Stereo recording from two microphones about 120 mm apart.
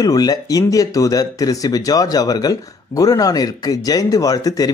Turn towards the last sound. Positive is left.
turn(degrees=30)  # may be behind; listen again after turning